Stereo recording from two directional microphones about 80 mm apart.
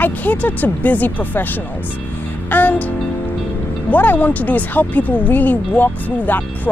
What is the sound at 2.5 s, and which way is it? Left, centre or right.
Music, left.